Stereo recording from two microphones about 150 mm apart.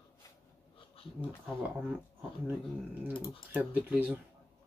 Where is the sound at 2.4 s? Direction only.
10° right (ahead or behind).